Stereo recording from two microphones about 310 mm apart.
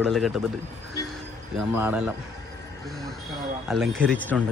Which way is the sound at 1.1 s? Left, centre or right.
Centre.